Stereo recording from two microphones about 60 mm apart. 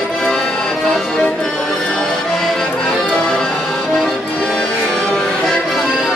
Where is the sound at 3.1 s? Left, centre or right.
Centre.